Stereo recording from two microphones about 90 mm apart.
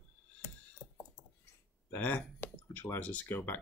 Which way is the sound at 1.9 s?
20° left (ahead or behind).